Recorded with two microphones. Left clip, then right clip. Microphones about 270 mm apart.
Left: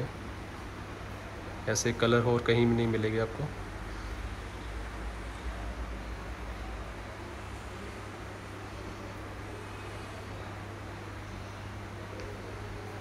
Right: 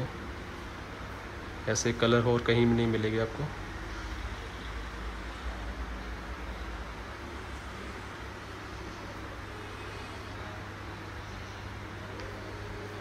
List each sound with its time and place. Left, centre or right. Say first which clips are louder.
1.7 s speech: right 1 dB; centre